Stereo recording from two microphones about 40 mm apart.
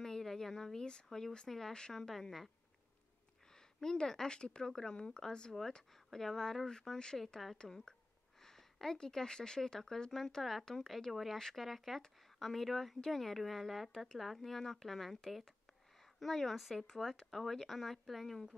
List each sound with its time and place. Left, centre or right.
0.0 s a sound: centre
1.1 s speech: centre
3.8 s speech: centre
6.0 s speech: centre
11.1 s speech: centre